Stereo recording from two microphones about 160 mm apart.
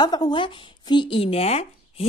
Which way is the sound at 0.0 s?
25° left (ahead or behind).